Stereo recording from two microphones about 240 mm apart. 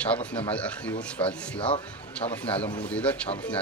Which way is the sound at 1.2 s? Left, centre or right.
Left.